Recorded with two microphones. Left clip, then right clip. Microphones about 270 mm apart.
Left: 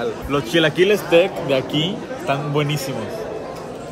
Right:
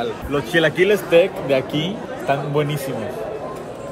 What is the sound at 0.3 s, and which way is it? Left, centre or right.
Speech, centre.